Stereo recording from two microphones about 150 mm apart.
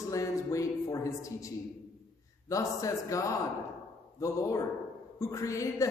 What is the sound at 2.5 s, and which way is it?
A man's voice, 20° left (ahead or behind).